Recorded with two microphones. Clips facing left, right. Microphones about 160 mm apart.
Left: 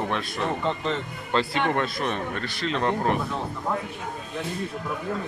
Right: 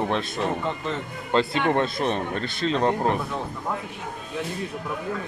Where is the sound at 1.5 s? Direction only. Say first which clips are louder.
Right 2 dB; 25° right (ahead or behind).